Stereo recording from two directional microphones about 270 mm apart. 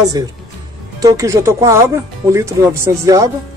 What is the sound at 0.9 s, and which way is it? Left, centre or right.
Speech, centre.